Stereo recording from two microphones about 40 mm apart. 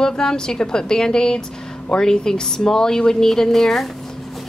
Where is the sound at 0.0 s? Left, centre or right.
Centre.